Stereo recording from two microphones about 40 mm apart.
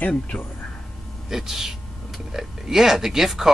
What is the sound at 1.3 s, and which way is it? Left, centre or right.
Speech, centre.